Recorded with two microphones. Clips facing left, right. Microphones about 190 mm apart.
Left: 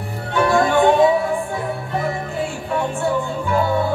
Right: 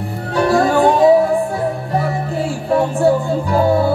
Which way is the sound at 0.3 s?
40° right (ahead or behind).